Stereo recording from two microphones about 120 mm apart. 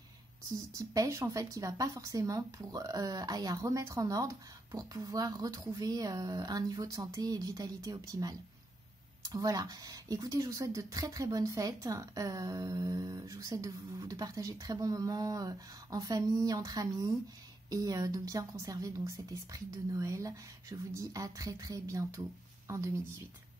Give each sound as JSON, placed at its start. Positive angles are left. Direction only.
{"t": 0.7, "sound": "speech", "side_deg": -25}